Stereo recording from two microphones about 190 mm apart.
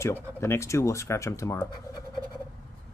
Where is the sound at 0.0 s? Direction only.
15° left (ahead or behind).